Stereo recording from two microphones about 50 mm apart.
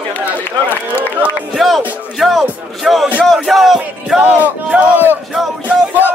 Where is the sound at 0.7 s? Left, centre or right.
Right.